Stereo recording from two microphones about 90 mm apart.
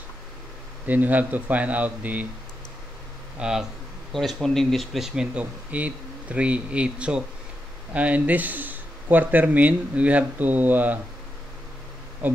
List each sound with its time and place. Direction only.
0.8 s speech: 20° right (ahead or behind)
3.3 s speech: 10° right (ahead or behind)